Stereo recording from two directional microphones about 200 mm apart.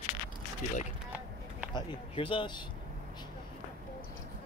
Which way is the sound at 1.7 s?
25° left (ahead or behind).